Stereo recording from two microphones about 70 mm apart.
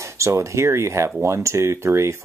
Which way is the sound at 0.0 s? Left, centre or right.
Right.